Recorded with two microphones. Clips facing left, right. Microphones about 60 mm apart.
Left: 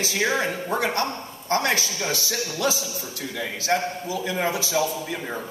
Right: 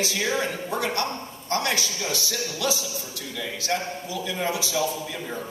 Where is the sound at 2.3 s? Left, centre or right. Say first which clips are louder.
Left 3 dB; left.